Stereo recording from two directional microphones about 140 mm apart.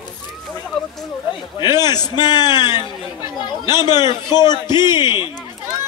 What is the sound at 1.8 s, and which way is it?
A man's voice, 30° left (ahead or behind).